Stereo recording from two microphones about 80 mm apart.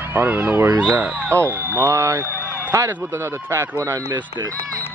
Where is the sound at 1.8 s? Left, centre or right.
Right.